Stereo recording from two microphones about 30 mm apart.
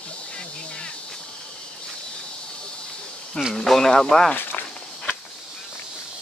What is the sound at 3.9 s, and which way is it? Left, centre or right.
Speech, centre.